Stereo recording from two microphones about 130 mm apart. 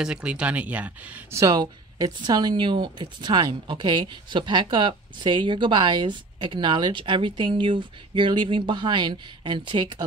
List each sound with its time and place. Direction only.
0.0 s speech: 5° right (ahead or behind)
1.4 s a woman's voice: 30° right (ahead or behind)